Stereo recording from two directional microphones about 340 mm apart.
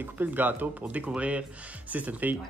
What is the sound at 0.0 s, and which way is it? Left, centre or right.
Speech, centre.